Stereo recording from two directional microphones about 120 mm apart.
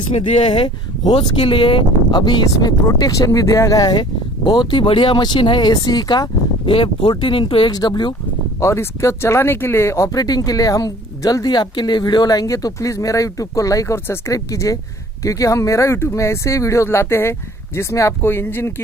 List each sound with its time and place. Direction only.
0.2 s speech: 40° left (ahead or behind)
2.9 s speech: 25° left (ahead or behind)